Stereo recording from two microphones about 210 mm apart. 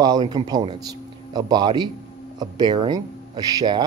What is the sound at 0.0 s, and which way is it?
Speech, 20° right (ahead or behind).